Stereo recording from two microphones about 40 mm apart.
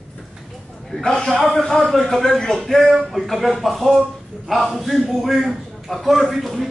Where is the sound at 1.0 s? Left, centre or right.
Centre.